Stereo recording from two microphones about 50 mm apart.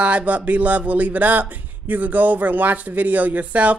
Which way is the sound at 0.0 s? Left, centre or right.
Right.